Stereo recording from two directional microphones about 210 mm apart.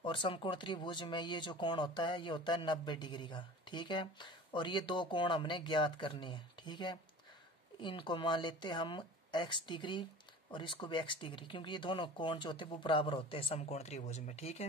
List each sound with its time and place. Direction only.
0.0 s speech: 25° left (ahead or behind)